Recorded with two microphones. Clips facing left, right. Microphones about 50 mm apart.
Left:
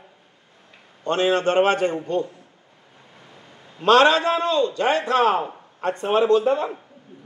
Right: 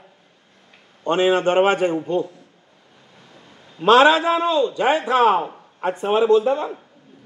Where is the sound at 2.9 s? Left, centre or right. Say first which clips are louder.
Left 1 dB; left.